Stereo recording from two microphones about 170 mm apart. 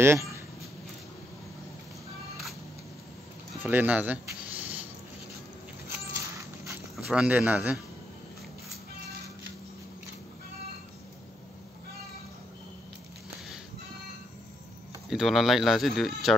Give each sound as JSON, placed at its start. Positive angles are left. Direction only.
{"t": 0.0, "sound": "speech", "side_deg": -15}
{"t": 3.6, "sound": "speech", "side_deg": -10}
{"t": 5.9, "sound": "a sound", "side_deg": -20}
{"t": 7.1, "sound": "speech", "side_deg": -5}
{"t": 15.0, "sound": "speech", "side_deg": 0}